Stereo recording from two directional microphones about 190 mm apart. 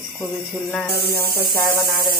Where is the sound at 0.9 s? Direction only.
55° left (ahead or behind).